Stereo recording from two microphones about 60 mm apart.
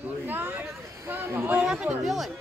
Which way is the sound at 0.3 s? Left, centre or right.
Right.